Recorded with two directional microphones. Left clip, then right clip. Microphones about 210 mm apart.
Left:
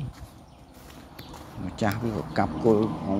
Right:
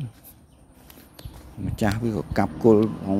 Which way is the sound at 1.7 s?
45° right (ahead or behind).